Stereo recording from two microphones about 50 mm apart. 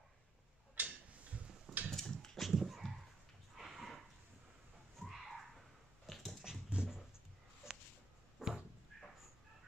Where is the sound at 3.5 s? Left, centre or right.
Centre.